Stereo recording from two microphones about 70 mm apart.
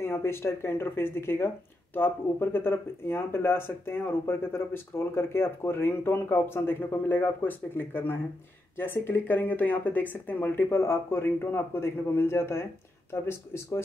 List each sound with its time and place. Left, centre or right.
0.0 s speech: left